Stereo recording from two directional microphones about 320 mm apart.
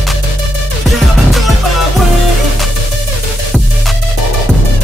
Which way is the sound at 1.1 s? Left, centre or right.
Centre.